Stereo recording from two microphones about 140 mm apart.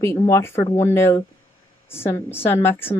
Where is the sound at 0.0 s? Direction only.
20° left (ahead or behind).